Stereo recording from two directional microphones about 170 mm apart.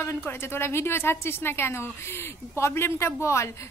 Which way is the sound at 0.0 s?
15° left (ahead or behind).